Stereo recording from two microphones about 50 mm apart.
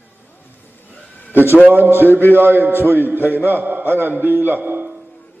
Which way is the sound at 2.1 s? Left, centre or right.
Left.